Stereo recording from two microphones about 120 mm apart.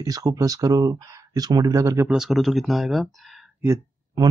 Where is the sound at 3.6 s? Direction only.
30° right (ahead or behind).